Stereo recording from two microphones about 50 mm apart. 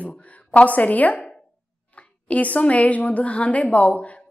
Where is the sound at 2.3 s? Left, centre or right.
Left.